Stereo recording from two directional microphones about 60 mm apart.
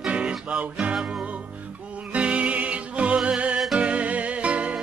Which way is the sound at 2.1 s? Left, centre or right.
Right.